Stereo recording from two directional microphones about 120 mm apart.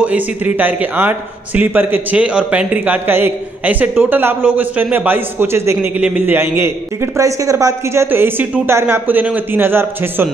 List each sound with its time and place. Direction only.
0.0 s a man's voice: 15° right (ahead or behind)